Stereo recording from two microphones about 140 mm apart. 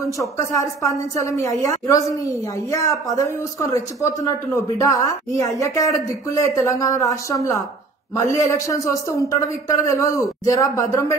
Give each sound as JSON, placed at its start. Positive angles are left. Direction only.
{"t": 0.0, "sound": "a man's voice", "side_deg": 25}